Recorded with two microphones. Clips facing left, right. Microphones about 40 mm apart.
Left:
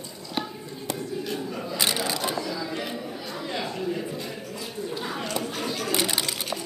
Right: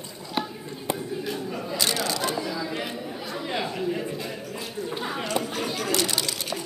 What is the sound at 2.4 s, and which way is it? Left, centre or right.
Single-lens reflex camera, centre.